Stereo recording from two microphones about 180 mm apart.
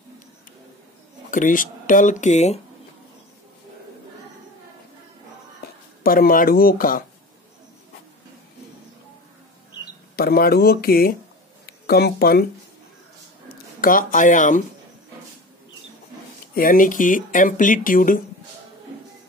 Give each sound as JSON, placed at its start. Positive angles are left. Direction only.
{"t": 1.3, "sound": "speech", "side_deg": 50}
{"t": 6.0, "sound": "speech", "side_deg": 50}
{"t": 10.1, "sound": "speech", "side_deg": 55}
{"t": 13.5, "sound": "speech", "side_deg": 50}
{"t": 16.5, "sound": "speech", "side_deg": 50}